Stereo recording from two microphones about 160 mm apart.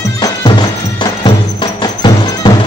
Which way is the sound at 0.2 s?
25° left (ahead or behind).